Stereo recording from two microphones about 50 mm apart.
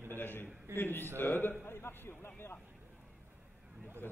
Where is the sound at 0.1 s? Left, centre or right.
Left.